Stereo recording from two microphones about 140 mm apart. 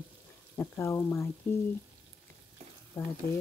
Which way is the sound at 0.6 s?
20° left (ahead or behind).